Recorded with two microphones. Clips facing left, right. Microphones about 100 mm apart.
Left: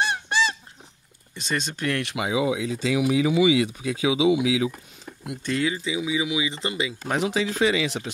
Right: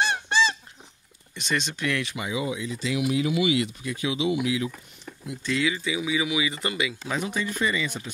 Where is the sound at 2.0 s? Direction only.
90° left.